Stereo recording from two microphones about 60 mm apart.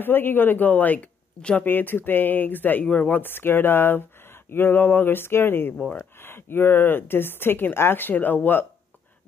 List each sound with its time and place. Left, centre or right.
0.0 s speech: left
1.6 s speech: left